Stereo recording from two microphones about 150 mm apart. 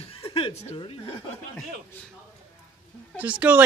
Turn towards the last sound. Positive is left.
turn(degrees=-10)  # may be behind; listen again after turning